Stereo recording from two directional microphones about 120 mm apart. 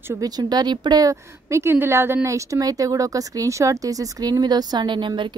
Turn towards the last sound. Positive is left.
turn(degrees=-40)  # may be behind; listen again after turning